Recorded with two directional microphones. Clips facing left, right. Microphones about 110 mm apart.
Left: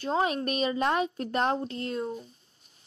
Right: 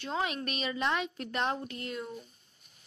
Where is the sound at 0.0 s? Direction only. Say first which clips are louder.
Left 6 dB; 35° left (ahead or behind).